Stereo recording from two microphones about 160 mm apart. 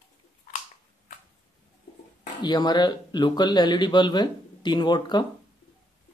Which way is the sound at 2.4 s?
25° left (ahead or behind).